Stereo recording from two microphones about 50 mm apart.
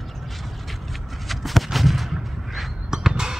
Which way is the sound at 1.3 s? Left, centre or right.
Centre.